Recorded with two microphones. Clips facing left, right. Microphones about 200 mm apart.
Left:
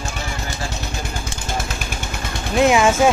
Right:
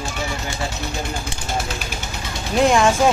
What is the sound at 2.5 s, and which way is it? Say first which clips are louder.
Speech: left 1 dB; 5° left (ahead or behind).